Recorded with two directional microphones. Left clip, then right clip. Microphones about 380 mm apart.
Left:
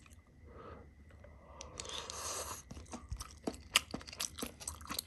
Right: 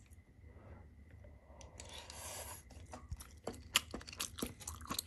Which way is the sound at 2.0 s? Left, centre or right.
Left.